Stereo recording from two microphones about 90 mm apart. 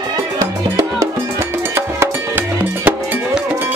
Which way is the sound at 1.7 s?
25° right (ahead or behind).